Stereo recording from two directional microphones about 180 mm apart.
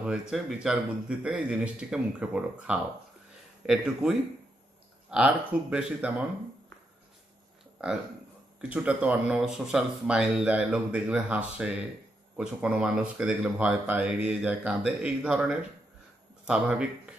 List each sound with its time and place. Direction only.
0.0 s speech: 5° right (ahead or behind)
5.1 s speech: 5° right (ahead or behind)
8.5 s speech: 5° right (ahead or behind)